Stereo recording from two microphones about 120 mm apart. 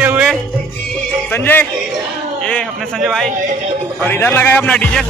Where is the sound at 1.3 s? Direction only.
15° left (ahead or behind).